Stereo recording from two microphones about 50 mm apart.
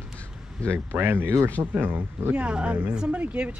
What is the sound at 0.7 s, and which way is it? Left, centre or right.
Speech, right.